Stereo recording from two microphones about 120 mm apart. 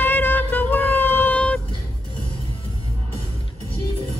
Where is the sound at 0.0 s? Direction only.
15° left (ahead or behind).